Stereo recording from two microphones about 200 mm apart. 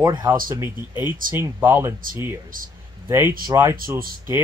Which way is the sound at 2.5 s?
45° right (ahead or behind).